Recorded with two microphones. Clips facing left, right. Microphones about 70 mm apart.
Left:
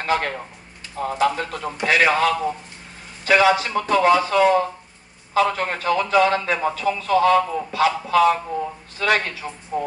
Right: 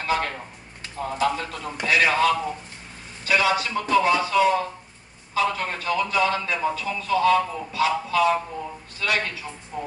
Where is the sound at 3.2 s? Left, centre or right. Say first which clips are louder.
Left 5 dB; left.